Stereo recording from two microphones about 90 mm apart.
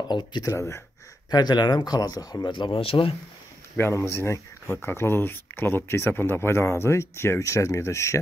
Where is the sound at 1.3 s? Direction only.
50° left (ahead or behind).